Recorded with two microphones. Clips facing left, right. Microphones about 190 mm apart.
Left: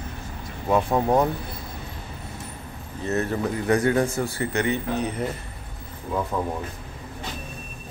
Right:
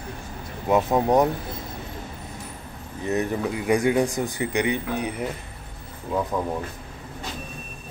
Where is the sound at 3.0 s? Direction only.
15° right (ahead or behind).